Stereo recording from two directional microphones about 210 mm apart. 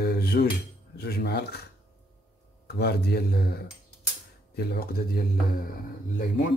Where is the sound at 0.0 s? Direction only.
45° left (ahead or behind).